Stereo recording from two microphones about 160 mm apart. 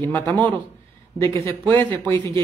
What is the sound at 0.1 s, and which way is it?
Speech, 10° left (ahead or behind).